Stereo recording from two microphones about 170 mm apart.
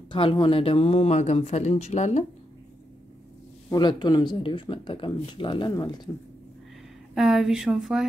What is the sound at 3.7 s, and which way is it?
Speech, 25° left (ahead or behind).